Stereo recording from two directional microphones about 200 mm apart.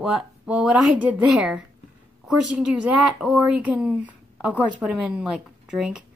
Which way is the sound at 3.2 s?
5° right (ahead or behind).